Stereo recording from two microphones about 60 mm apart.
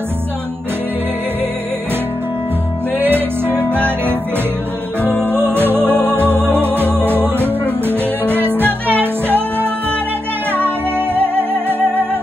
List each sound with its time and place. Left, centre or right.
3.0 s music: right
5.2 s music: right